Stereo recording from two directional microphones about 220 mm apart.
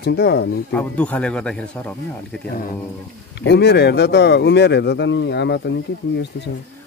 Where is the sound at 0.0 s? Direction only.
50° left (ahead or behind).